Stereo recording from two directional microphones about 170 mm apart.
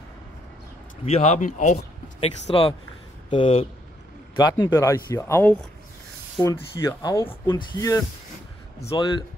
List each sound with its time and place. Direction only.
1.0 s speech: 40° left (ahead or behind)
2.1 s speech: 35° left (ahead or behind); by 5.6 s 15° left (ahead or behind)
6.8 s speech: 20° left (ahead or behind)